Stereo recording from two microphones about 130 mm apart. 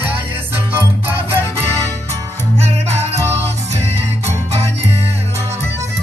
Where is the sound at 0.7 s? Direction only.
15° right (ahead or behind).